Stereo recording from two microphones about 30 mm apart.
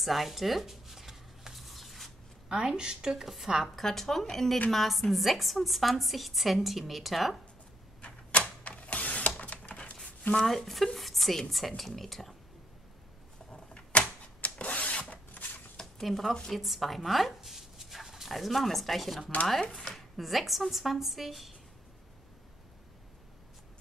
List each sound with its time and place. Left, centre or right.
0.0 s writing: centre
2.5 s a woman's voice: right
3.6 s a woman's voice: centre
8.0 s a sound: left
10.3 s a woman's voice: centre
13.5 s a sound: left
16.0 s a woman's voice: centre
17.4 s dog: centre
18.3 s a woman's voice: centre
19.7 s speech: centre
20.2 s a woman's voice: centre